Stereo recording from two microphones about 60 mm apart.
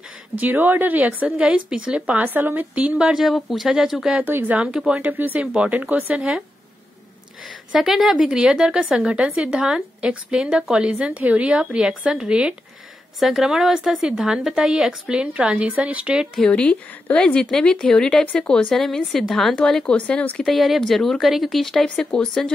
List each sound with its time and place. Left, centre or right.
0.4 s speech: right
2.2 s speech: right; by 3.3 s centre
3.3 s a woman's voice: centre
4.3 s speech: right
4.7 s a woman's voice: centre
5.0 s speech: right
7.7 s a woman's voice: centre
13.2 s a woman's voice: centre
16.4 s a woman's voice: centre
20.4 s a woman's voice: centre
21.8 s a woman's voice: centre